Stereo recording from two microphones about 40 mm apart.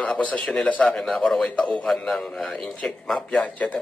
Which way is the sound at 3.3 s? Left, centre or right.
Left.